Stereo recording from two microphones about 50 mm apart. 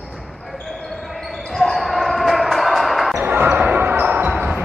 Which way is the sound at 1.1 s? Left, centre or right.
Centre.